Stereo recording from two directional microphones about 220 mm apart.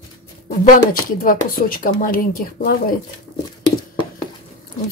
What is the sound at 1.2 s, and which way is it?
A woman's voice, 40° left (ahead or behind).